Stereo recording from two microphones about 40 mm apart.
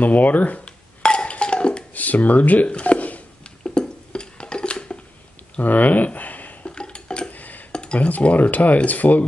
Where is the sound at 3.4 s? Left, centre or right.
Left.